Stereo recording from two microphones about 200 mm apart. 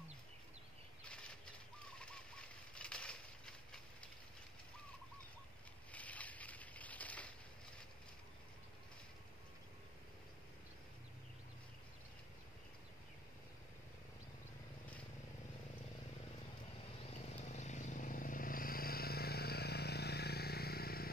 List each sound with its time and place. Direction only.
1.0 s bird flight: 5° left (ahead or behind)
5.9 s a sound: 5° left (ahead or behind)
17.0 s vehicle: 35° left (ahead or behind); by 21.1 s 50° left (ahead or behind)